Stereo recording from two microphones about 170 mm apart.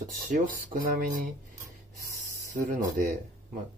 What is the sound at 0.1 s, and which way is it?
Speech, 50° right (ahead or behind).